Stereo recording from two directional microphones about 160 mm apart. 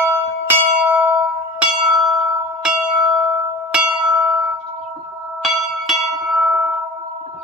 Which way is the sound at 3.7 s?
5° right (ahead or behind).